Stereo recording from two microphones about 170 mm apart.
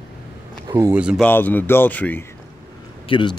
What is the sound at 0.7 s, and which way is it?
Speech, 20° right (ahead or behind).